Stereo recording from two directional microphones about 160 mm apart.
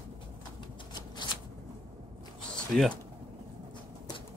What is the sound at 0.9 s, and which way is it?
Shuffling cards, 25° left (ahead or behind).